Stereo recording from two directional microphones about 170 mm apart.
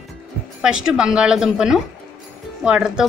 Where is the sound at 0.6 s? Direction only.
5° right (ahead or behind).